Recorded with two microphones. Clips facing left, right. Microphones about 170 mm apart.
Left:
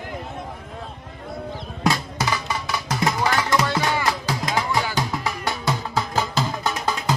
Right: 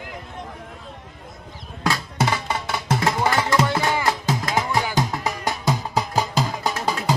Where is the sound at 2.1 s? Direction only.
25° right (ahead or behind); by 7.0 s 10° right (ahead or behind).